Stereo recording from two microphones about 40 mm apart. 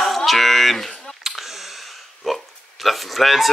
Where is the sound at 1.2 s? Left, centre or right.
Centre.